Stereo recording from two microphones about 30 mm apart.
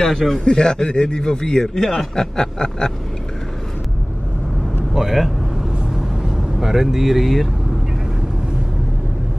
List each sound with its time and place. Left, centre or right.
0.0 s a man's voice: centre
0.4 s a man's voice: left
4.9 s vehicle: centre
6.6 s speech: centre